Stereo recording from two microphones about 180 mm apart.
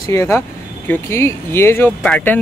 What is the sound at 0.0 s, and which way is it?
Speech, 15° left (ahead or behind).